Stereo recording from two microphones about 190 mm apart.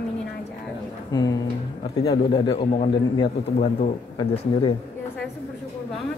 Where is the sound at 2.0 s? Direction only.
25° left (ahead or behind).